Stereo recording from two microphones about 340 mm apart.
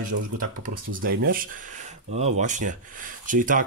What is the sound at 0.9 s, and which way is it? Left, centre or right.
Speech, right.